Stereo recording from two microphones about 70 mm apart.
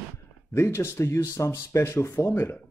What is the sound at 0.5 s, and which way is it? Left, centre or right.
Speech, left.